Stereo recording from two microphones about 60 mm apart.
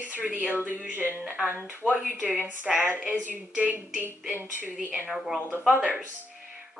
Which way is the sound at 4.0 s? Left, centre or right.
Right.